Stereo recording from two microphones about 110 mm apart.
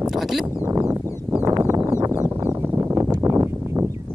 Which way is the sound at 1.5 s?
30° right (ahead or behind).